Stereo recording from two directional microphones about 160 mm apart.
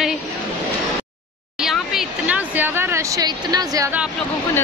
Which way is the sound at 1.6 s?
5° right (ahead or behind).